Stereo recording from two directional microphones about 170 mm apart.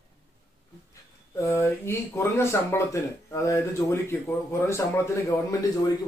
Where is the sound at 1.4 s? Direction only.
15° left (ahead or behind).